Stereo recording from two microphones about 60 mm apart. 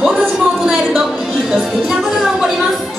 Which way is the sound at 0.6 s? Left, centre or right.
Centre.